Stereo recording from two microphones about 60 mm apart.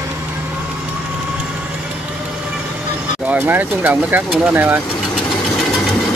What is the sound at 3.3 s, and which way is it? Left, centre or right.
Speech, right.